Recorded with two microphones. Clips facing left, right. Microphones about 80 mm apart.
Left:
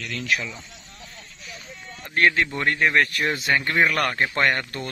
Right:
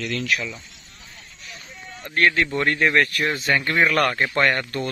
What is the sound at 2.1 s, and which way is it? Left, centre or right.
Speech, left.